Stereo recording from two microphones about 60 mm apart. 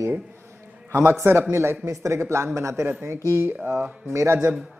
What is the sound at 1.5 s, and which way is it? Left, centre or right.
Speech, right.